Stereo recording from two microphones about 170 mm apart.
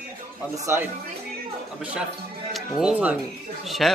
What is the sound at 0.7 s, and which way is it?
Speech, 15° right (ahead or behind).